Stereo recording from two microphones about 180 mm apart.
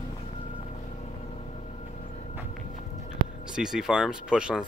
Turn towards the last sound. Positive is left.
turn(degrees=-5)  # may be behind; listen again after turning